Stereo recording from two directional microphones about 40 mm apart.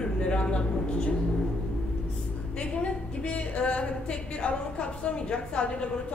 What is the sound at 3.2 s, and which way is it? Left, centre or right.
A woman's voice, left.